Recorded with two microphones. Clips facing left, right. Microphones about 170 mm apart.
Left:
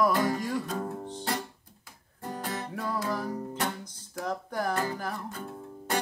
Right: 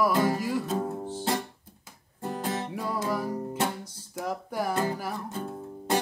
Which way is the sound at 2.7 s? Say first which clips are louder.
Right 2 dB; 10° right (ahead or behind).